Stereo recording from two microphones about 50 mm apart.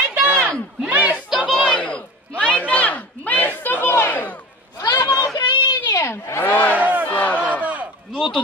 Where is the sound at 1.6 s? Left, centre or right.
Left.